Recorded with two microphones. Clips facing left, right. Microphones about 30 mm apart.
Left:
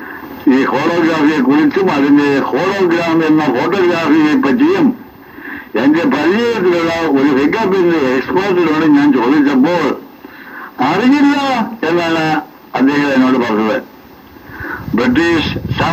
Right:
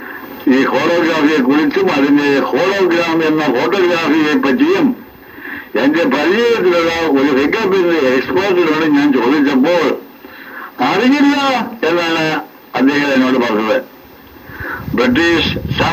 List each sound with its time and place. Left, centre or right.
0.7 s a man's voice: right
5.4 s a sound: centre
6.1 s a man's voice: right
15.0 s a man's voice: right